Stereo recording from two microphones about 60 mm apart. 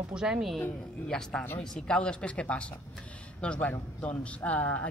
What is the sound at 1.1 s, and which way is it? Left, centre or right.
A woman's voice, centre.